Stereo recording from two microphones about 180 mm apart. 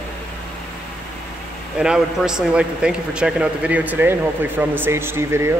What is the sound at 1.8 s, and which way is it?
A man's voice, 5° right (ahead or behind).